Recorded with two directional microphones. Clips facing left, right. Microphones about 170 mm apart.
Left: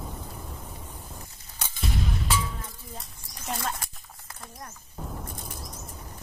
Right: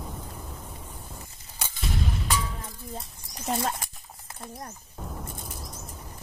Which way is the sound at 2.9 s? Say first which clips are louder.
Right 4 dB; 30° right (ahead or behind).